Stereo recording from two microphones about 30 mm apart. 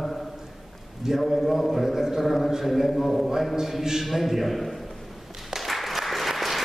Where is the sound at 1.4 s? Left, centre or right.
Centre.